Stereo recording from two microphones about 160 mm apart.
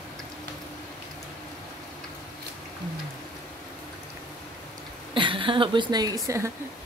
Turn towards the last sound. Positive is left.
turn(degrees=-20)  # may be behind; listen again after turning